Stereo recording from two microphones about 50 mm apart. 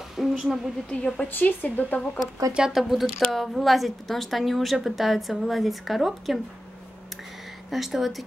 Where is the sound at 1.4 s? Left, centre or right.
Left.